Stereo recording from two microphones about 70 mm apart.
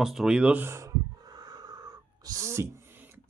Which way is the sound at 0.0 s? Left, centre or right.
Centre.